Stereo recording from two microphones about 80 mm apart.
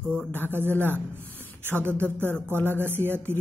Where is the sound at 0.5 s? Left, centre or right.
Right.